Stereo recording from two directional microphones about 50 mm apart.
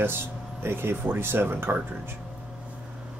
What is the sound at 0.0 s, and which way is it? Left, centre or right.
Speech, right.